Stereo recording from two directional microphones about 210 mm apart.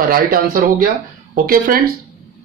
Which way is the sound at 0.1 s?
45° right (ahead or behind).